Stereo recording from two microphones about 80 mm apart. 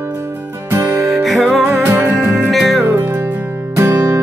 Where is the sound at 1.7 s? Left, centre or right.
Right.